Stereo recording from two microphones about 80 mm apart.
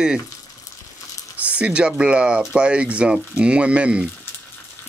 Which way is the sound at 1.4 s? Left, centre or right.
Centre.